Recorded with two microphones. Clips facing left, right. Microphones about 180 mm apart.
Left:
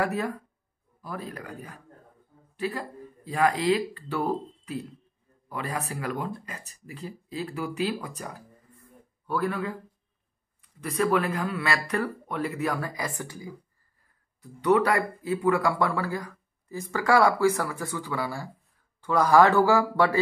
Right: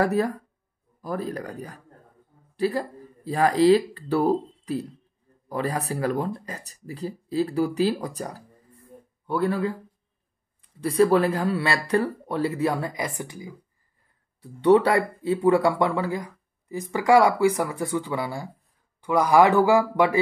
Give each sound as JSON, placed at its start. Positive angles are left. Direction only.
{"t": 0.0, "sound": "speech", "side_deg": -40}
{"t": 10.8, "sound": "speech", "side_deg": -30}
{"t": 14.4, "sound": "speech", "side_deg": -30}